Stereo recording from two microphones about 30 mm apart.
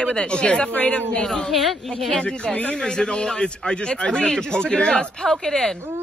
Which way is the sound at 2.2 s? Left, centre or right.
Left.